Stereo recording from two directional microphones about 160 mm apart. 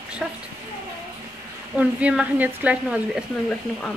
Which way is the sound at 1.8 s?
10° right (ahead or behind).